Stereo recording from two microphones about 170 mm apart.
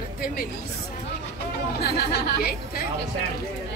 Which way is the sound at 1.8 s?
65° left (ahead or behind).